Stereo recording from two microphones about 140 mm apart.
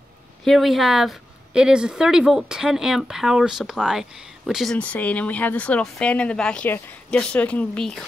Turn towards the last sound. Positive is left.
turn(degrees=5)  # may be behind; listen again after turning